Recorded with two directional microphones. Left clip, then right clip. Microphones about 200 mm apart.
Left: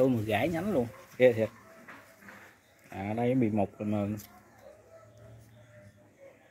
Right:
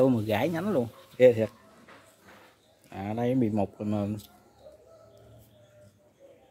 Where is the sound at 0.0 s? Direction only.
20° right (ahead or behind).